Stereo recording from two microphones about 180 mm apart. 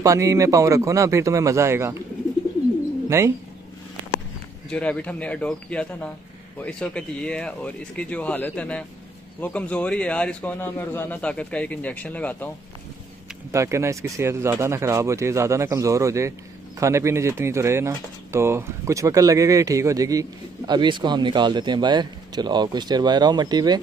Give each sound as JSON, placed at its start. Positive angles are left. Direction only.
{"t": 0.0, "sound": "speech", "side_deg": -15}
{"t": 3.1, "sound": "speech", "side_deg": -15}
{"t": 4.6, "sound": "a man's voice", "side_deg": 5}
{"t": 13.5, "sound": "speech", "side_deg": -15}